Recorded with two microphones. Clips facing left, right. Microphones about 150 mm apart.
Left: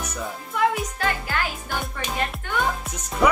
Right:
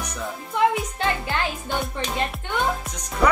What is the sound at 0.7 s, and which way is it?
Music, 25° right (ahead or behind).